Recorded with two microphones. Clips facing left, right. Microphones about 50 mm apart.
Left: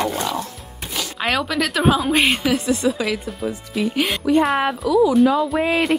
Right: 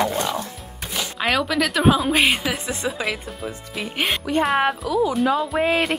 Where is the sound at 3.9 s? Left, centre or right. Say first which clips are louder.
Left 3 dB; right.